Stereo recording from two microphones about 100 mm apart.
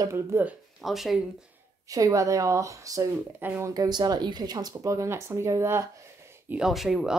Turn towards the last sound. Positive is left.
turn(degrees=-5)  # may be behind; listen again after turning